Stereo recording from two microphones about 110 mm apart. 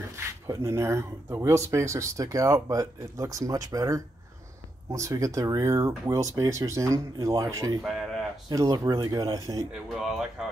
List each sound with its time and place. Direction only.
0.1 s speech: 25° right (ahead or behind)
9.7 s speech: 5° right (ahead or behind)